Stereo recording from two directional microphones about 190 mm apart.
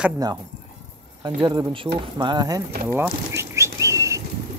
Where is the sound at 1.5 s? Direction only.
25° right (ahead or behind).